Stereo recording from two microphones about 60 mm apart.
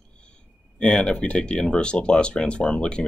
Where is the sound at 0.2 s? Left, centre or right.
Centre.